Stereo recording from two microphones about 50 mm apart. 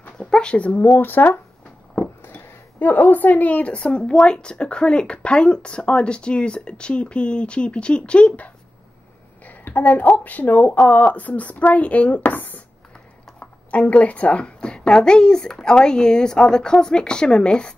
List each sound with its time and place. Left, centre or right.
0.2 s a woman's voice: centre
9.7 s a woman's voice: left; by 17.7 s centre